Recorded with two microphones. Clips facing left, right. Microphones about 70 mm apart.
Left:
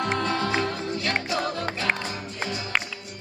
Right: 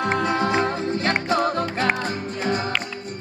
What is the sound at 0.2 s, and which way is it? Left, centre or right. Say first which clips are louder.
Music: right 4 dB; right.